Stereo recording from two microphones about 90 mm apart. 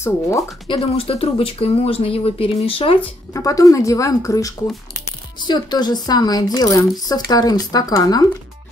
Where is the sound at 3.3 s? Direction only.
40° left (ahead or behind).